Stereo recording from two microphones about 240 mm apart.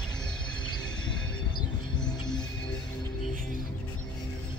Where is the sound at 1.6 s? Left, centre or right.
Centre.